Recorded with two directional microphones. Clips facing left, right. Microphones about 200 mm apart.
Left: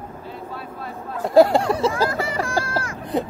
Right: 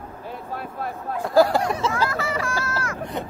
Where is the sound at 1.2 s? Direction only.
25° left (ahead or behind).